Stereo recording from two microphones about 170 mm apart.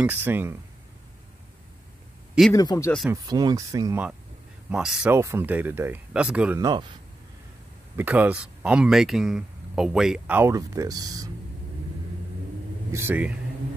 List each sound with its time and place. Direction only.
0.0 s speech: 10° right (ahead or behind)
2.5 s speech: 20° left (ahead or behind)
3.3 s speech: 25° right (ahead or behind)
4.6 s speech: 5° right (ahead or behind)
6.6 s speech: 25° right (ahead or behind)
7.9 s speech: 10° right (ahead or behind)
12.9 s speech: 10° right (ahead or behind)